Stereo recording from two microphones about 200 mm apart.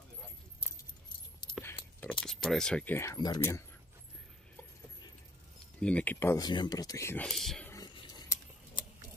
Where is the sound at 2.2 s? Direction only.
Centre (ahead or behind).